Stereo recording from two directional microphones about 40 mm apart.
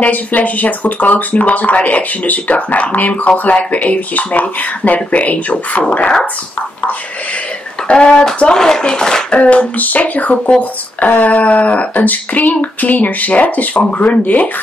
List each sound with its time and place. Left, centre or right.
0.0 s speech: left
7.9 s speech: left
9.3 s speech: left